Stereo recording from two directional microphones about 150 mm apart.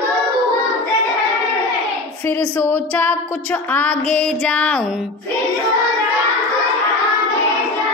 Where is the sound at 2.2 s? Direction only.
15° left (ahead or behind).